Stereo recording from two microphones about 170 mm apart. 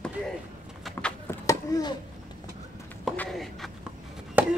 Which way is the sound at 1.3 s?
20° left (ahead or behind).